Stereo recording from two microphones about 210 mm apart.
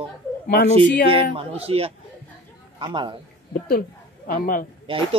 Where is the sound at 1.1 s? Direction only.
25° right (ahead or behind).